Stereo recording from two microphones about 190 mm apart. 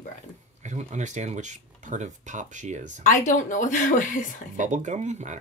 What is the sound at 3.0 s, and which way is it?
Speech, 40° left (ahead or behind).